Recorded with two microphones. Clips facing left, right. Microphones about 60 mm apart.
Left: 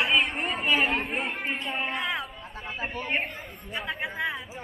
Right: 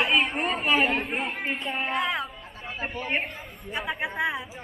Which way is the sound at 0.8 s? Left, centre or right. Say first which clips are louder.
Right 1 dB; left.